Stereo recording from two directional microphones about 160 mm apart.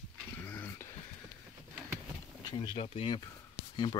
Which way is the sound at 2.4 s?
30° left (ahead or behind).